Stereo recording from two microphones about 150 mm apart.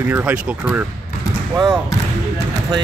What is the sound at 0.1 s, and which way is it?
Speech, 10° right (ahead or behind).